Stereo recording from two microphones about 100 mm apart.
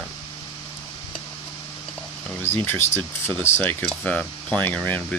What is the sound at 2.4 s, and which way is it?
Speech, 20° left (ahead or behind).